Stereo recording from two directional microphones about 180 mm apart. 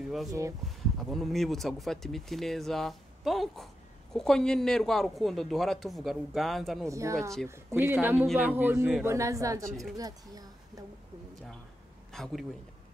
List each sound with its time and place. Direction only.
0.3 s speech: 15° right (ahead or behind)
0.7 s speech: centre (ahead or behind)
6.9 s a woman's voice: 15° right (ahead or behind)
12.1 s a man's voice: centre (ahead or behind)